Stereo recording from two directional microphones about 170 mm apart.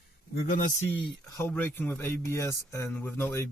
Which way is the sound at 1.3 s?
15° left (ahead or behind).